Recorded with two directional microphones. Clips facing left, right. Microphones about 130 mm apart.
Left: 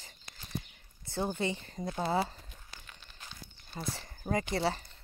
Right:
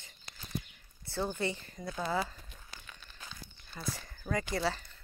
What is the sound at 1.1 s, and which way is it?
Speech, 20° left (ahead or behind).